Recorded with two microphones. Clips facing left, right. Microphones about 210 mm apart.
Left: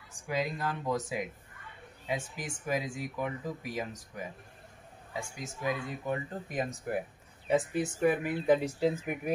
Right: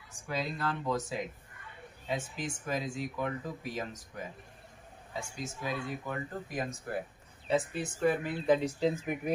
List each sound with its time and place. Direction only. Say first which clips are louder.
0.3 s speech: left 1 dB; 15° left (ahead or behind)